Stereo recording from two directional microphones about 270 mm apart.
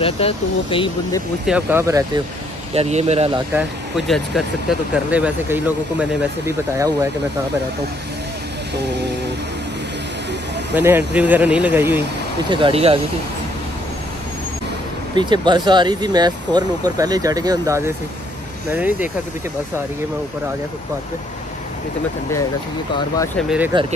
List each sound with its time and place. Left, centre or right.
0.0 s speech: centre
1.4 s speech: centre
2.7 s speech: right
3.5 s speech: centre
10.7 s speech: centre
12.4 s speech: centre
15.1 s speech: centre
23.3 s speech: centre